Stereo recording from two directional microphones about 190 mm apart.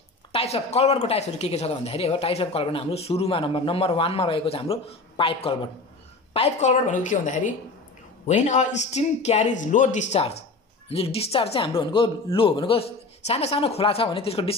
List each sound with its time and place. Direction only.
0.3 s speech: 35° left (ahead or behind)